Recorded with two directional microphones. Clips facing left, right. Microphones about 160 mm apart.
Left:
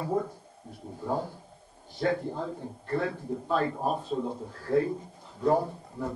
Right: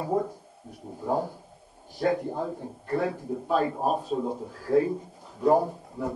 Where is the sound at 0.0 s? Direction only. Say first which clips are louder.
Right 2 dB; 20° right (ahead or behind).